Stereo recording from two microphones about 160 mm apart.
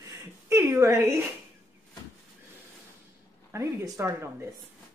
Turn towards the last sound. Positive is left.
turn(degrees=-15)  # may be behind; listen again after turning